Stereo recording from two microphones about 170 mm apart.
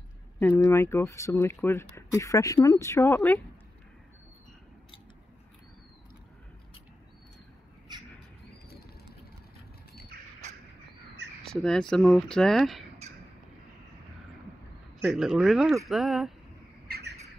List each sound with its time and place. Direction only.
0.4 s speech: 15° left (ahead or behind)
10.1 s bird: 65° right (ahead or behind)
11.6 s speech: 5° left (ahead or behind)
15.0 s speech: 5° right (ahead or behind)
16.8 s squawk: 65° right (ahead or behind)